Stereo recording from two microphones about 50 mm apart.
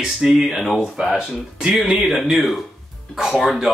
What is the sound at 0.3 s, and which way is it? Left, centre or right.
Speech, centre.